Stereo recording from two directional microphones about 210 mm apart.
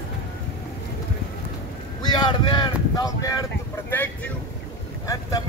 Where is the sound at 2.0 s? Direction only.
20° left (ahead or behind).